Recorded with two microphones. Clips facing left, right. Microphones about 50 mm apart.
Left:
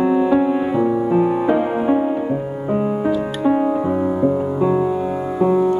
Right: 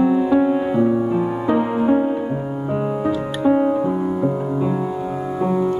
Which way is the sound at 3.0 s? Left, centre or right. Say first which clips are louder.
Left 1 dB; centre.